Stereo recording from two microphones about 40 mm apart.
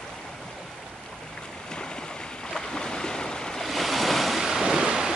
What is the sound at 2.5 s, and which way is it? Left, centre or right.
Boat, centre.